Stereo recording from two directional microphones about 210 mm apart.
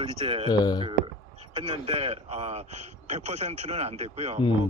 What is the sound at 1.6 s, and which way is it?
A man's voice, 25° right (ahead or behind).